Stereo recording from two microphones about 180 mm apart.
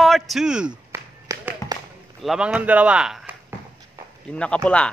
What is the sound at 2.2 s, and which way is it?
Speech, centre (ahead or behind).